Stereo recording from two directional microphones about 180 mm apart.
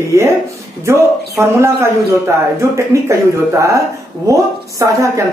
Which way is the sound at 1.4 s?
15° right (ahead or behind).